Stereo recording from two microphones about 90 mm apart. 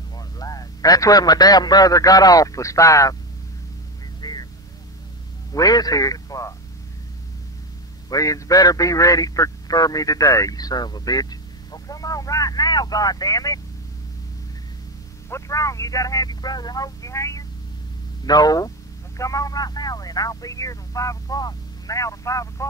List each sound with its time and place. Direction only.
0.1 s a man's voice: 45° left (ahead or behind)
4.2 s vehicle: 50° left (ahead or behind)
5.5 s speech: 45° left (ahead or behind)
8.1 s a man's voice: 40° left (ahead or behind)
15.2 s a man's voice: 35° left (ahead or behind)